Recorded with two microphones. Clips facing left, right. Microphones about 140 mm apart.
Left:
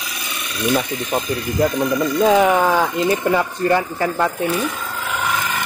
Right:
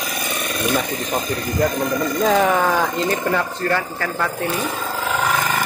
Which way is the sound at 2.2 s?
10° left (ahead or behind).